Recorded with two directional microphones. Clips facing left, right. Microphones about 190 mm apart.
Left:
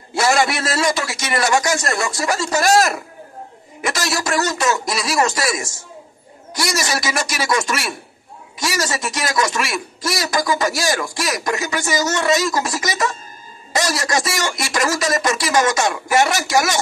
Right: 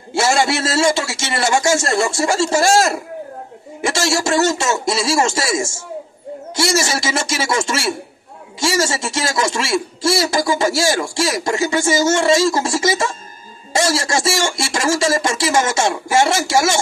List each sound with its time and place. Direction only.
0.1 s a man's voice: 25° right (ahead or behind)